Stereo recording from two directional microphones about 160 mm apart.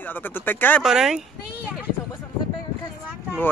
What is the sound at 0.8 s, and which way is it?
Speech, 5° right (ahead or behind).